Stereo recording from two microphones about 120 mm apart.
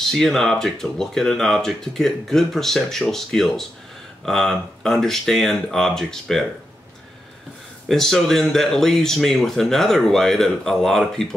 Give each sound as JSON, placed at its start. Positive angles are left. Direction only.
{"t": 0.1, "sound": "speech", "side_deg": 5}
{"t": 7.9, "sound": "speech", "side_deg": 5}